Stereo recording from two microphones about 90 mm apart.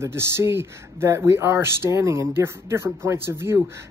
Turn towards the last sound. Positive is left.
turn(degrees=-30)  # may be behind; listen again after turning